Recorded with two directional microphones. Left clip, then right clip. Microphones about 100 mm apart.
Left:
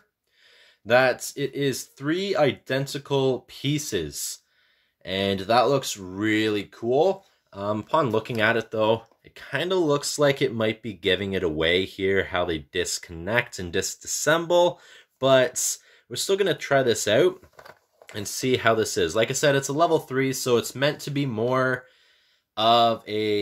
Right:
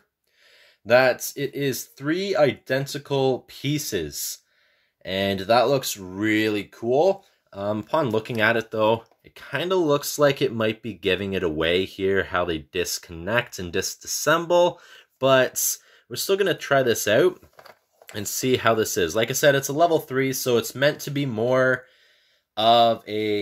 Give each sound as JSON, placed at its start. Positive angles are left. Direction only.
{"t": 0.5, "sound": "speech", "side_deg": -35}
{"t": 13.8, "sound": "speech", "side_deg": 20}
{"t": 14.2, "sound": "speech", "side_deg": -20}
{"t": 18.0, "sound": "speech", "side_deg": -35}